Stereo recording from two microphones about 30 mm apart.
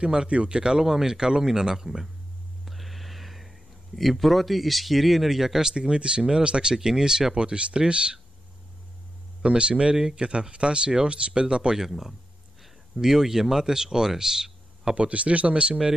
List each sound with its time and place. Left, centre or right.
0.0 s speech: right
0.8 s speech: centre
2.6 s a sound: centre
5.6 s speech: right
6.7 s speech: right
9.4 s speech: right
9.9 s speech: right
10.2 s speech: right
11.9 s speech: centre
13.0 s speech: centre
15.0 s speech: right